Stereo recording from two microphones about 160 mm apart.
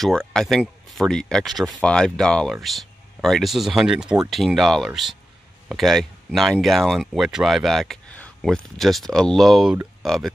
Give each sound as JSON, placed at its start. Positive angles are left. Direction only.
{"t": 0.0, "sound": "speech", "side_deg": 5}